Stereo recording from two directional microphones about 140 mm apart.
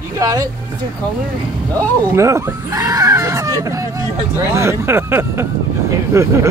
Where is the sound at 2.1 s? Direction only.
20° right (ahead or behind).